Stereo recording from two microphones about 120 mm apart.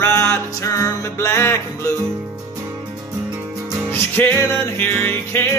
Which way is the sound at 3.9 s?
15° left (ahead or behind).